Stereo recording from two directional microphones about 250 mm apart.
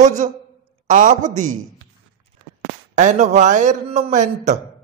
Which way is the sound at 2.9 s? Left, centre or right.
Right.